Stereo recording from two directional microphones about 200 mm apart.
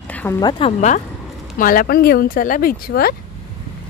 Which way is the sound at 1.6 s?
45° left (ahead or behind).